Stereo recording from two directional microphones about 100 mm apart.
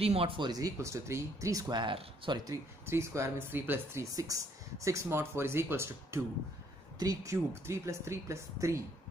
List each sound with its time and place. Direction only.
0.0 s speech: 75° right (ahead or behind)
0.4 s speech: 40° right (ahead or behind); by 2.4 s 60° right (ahead or behind)
2.4 s speech: 30° right (ahead or behind)
4.0 s speech: 35° right (ahead or behind)